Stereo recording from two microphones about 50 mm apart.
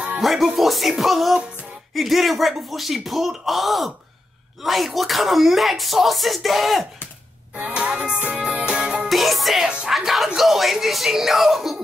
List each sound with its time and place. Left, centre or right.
0.2 s speech: centre
7.6 s music: centre
9.1 s music: centre
9.8 s speech: centre